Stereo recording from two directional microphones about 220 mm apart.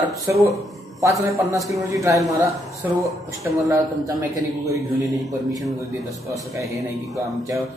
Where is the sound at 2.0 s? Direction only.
15° right (ahead or behind).